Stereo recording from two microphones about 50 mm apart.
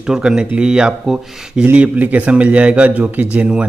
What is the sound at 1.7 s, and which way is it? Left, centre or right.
Speech, right.